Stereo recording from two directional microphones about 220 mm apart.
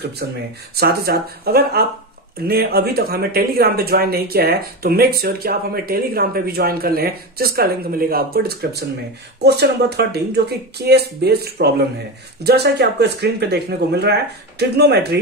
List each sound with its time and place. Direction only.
0.2 s speech: 45° right (ahead or behind)